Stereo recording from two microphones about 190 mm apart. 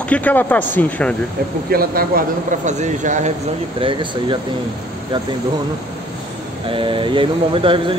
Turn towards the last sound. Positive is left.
turn(degrees=-25)  # may be behind; listen again after turning